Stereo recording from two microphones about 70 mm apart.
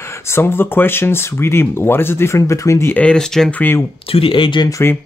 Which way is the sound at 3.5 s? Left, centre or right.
Left.